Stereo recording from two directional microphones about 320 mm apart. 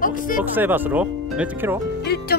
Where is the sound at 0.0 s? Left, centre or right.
Left.